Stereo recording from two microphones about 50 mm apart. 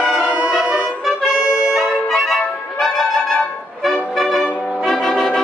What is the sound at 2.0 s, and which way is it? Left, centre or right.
Music, centre.